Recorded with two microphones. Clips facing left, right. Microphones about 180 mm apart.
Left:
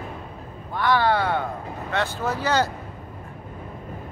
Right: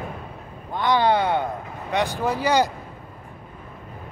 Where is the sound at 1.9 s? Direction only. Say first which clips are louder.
Right 3 dB; 15° right (ahead or behind).